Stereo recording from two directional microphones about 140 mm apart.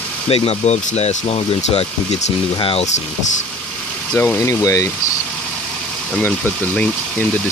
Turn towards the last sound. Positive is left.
turn(degrees=10)  # may be behind; listen again after turning